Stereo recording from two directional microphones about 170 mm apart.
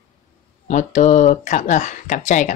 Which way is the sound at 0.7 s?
45° left (ahead or behind).